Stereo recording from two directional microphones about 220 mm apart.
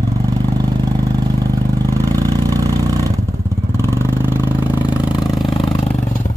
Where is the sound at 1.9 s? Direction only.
10° left (ahead or behind).